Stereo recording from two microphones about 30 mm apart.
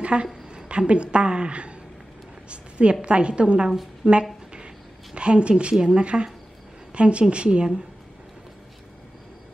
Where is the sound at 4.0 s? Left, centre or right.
Right.